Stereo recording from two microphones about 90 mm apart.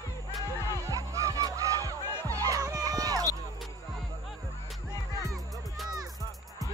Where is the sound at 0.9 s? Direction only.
40° right (ahead or behind).